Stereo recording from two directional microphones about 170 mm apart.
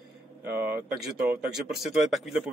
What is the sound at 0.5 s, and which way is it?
Speech, 10° right (ahead or behind).